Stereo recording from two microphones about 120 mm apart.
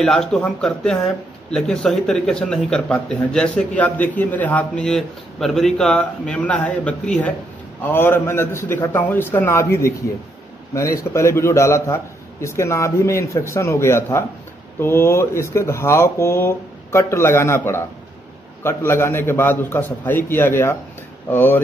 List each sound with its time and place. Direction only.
0.0 s a man's voice: 5° left (ahead or behind)